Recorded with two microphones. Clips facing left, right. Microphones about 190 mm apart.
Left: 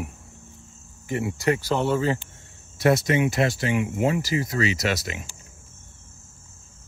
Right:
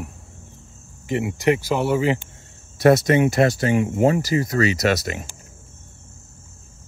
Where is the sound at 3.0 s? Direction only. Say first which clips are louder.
Right 5 dB; 45° right (ahead or behind).